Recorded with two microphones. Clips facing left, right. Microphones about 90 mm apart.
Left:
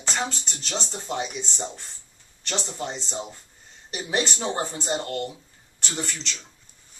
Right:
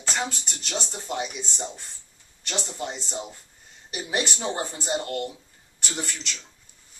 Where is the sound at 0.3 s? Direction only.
10° right (ahead or behind).